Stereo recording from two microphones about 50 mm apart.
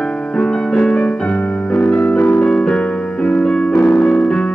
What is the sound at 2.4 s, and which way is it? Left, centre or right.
Music, centre.